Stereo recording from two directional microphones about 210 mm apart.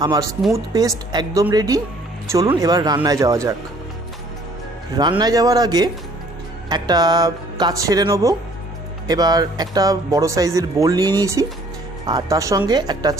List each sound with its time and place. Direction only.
0.0 s speech: 15° right (ahead or behind)
4.9 s a woman's voice: 20° right (ahead or behind)